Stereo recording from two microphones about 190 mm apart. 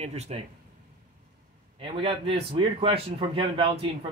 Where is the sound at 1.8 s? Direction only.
25° right (ahead or behind).